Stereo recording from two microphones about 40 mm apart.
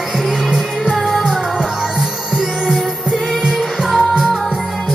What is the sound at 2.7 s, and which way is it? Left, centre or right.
Music, centre.